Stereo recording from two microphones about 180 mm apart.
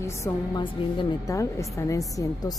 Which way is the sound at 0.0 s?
15° left (ahead or behind).